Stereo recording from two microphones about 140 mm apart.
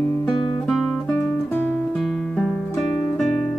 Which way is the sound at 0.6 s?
Centre (ahead or behind).